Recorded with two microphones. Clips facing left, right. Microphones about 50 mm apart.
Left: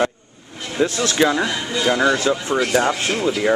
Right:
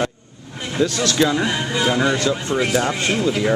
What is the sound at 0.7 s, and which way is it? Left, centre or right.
Speech, left.